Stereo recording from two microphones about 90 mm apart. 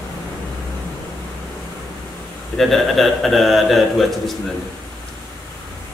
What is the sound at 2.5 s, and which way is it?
A man's voice, centre (ahead or behind).